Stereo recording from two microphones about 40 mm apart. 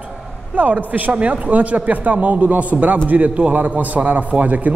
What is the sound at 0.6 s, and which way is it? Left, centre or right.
Speech, right.